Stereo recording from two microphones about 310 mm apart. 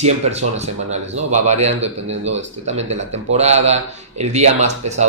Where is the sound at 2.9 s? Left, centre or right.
Right.